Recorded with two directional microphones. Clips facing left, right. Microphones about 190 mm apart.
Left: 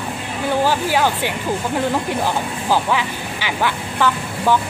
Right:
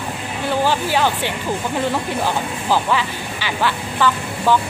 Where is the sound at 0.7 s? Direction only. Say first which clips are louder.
Left 1 dB; 10° left (ahead or behind).